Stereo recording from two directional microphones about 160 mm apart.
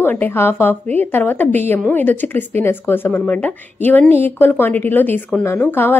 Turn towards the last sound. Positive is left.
turn(degrees=15)  # may be behind; listen again after turning